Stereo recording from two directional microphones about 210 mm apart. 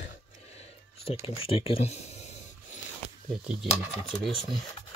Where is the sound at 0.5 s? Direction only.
25° left (ahead or behind).